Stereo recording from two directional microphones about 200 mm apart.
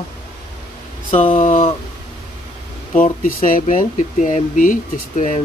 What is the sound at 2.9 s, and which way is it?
Speech, 40° left (ahead or behind).